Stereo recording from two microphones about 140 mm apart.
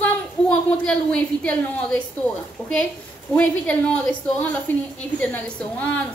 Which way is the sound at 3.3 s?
10° left (ahead or behind).